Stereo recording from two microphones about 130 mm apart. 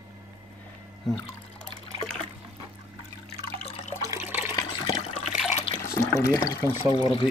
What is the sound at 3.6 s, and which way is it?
Water, 55° left (ahead or behind).